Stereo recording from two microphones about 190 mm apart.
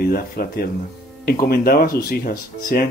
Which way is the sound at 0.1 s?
50° left (ahead or behind).